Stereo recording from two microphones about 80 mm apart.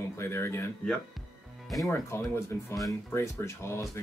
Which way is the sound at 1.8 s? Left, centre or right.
Left.